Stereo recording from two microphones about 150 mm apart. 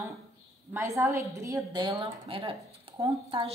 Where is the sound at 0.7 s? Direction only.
15° right (ahead or behind).